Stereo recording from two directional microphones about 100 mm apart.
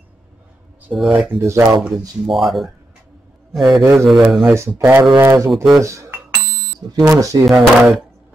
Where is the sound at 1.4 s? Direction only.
30° right (ahead or behind).